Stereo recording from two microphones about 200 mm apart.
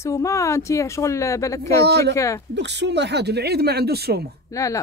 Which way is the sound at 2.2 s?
15° left (ahead or behind).